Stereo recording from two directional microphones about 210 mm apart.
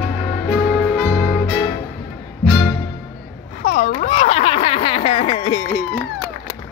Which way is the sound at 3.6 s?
35° left (ahead or behind).